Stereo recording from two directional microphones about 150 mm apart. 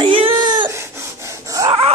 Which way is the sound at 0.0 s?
35° right (ahead or behind).